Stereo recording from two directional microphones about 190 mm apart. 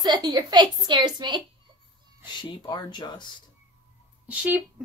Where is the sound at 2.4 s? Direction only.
25° left (ahead or behind).